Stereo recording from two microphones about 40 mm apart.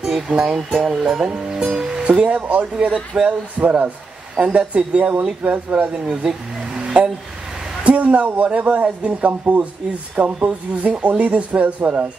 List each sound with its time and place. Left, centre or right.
0.0 s speech: centre
2.0 s speech: right
5.4 s speech: right
6.0 s speech: centre
7.8 s speech: right